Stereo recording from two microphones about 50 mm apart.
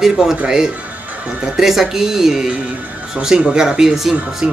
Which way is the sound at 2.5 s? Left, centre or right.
Right.